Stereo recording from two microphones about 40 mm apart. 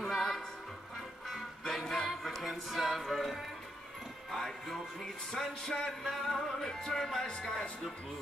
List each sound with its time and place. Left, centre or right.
0.0 s music: centre
5.3 s music: centre
5.9 s music: centre